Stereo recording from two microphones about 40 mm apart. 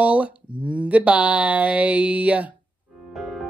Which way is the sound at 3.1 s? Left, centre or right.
Centre.